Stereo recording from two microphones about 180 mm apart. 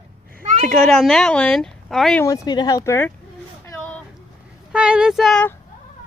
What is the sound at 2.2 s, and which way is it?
Speech, 20° left (ahead or behind).